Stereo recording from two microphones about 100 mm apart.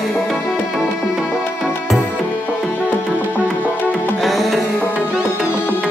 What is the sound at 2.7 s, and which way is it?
Music, 20° left (ahead or behind).